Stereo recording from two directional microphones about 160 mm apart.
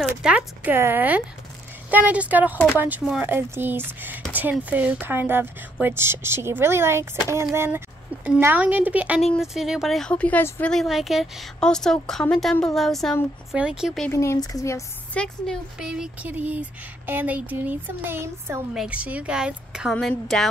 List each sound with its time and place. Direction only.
0.0 s speech: 5° right (ahead or behind)
14.1 s speech: 20° left (ahead or behind)
15.1 s speech: 5° left (ahead or behind)
15.8 s speech: 5° right (ahead or behind)